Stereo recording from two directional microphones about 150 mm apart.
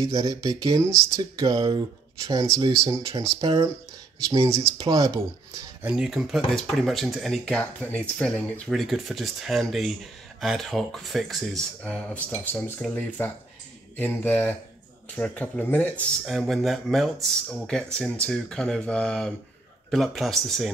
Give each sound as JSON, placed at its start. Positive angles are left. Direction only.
{"t": 0.0, "sound": "speech", "side_deg": -20}
{"t": 5.8, "sound": "speech", "side_deg": -5}
{"t": 16.3, "sound": "speech", "side_deg": 0}